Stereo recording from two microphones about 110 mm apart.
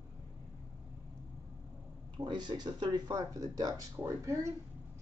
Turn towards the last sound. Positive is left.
turn(degrees=-30)  # may be behind; listen again after turning